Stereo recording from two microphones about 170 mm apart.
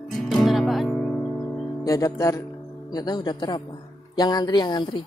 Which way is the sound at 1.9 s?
20° left (ahead or behind).